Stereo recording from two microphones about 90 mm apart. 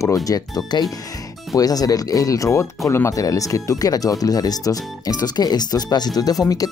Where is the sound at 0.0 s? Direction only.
40° left (ahead or behind).